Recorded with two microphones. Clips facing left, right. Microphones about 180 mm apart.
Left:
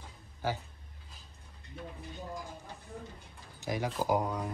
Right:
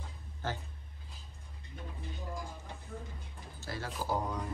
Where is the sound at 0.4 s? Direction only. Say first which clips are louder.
Left 4 dB; 10° left (ahead or behind).